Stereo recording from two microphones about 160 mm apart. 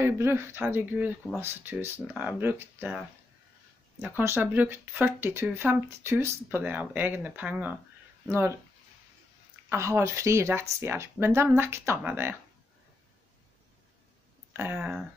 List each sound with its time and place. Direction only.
0.0 s speech: 15° right (ahead or behind)
4.2 s speech: 15° right (ahead or behind)
9.7 s speech: 15° right (ahead or behind)
14.5 s speech: 10° right (ahead or behind)